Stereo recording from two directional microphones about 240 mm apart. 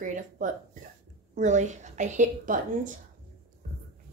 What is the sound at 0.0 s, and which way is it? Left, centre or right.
Speech, right.